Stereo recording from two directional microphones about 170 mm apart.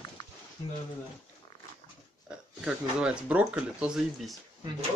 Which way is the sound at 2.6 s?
5° right (ahead or behind).